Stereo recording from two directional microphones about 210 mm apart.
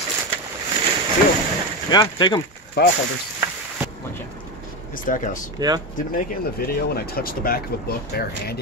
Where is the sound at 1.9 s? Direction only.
20° left (ahead or behind).